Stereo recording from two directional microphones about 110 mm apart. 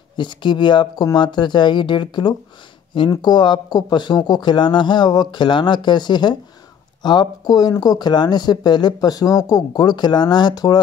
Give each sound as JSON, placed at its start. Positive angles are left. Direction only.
{"t": 0.2, "sound": "speech", "side_deg": 45}